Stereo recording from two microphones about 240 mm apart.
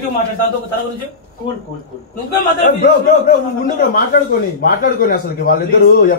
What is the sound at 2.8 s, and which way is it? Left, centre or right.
A man's voice, left.